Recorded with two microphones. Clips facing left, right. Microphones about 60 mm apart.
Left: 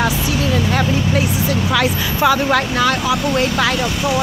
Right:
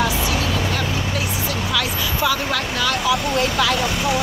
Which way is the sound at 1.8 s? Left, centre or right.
Left.